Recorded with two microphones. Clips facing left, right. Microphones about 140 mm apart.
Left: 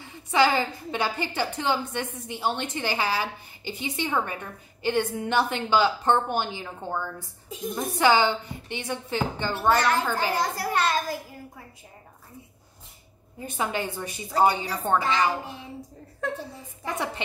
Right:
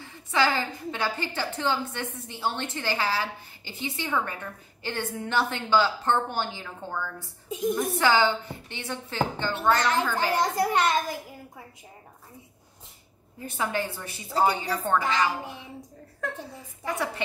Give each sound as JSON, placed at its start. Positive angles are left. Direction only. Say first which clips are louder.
{"t": 0.0, "sound": "a woman's voice", "louder": "left 3 dB", "side_deg": 15}
{"t": 7.4, "sound": "a woman's voice", "louder": "right 7 dB", "side_deg": -15}
{"t": 7.7, "sound": "a woman's voice", "louder": "left 3 dB", "side_deg": 20}
{"t": 10.5, "sound": "a child's voice", "louder": "right 2 dB", "side_deg": -20}
{"t": 13.4, "sound": "a woman's voice", "louder": "even", "side_deg": 20}
{"t": 16.8, "sound": "a woman's voice", "louder": "even", "side_deg": 20}